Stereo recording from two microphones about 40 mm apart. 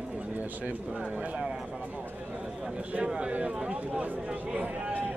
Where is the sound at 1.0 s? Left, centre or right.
Right.